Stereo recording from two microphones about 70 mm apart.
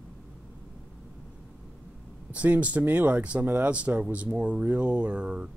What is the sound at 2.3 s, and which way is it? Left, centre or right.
Speech, centre.